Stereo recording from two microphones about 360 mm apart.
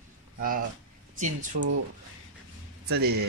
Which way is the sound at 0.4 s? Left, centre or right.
Right.